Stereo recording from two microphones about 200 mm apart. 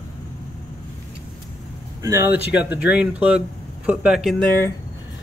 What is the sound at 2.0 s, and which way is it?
Speech, 15° right (ahead or behind).